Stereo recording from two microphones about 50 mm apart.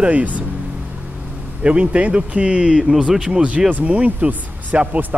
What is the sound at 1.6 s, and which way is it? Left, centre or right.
Speech, right.